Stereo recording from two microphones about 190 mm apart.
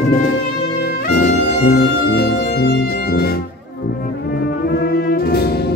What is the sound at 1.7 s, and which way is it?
Music, 60° left (ahead or behind).